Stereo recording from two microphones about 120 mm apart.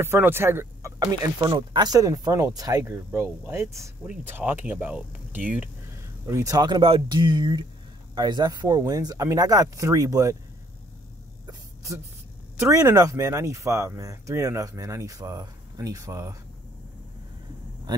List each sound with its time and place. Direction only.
0.0 s speech: 20° right (ahead or behind)
2.8 s speech: 20° right (ahead or behind)
4.0 s speech: 15° right (ahead or behind)
6.2 s speech: 25° right (ahead or behind)
6.8 s speech: 45° right (ahead or behind); by 10.3 s 25° right (ahead or behind)
11.4 s a sound: 25° right (ahead or behind)
12.5 s speech: 25° right (ahead or behind)